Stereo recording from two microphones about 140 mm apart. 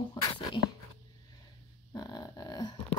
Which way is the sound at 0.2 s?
40° left (ahead or behind).